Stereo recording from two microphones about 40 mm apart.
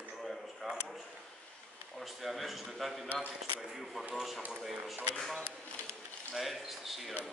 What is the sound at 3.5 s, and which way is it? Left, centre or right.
A man's voice, centre.